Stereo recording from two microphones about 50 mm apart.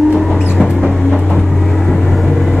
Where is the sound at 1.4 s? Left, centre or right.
Centre.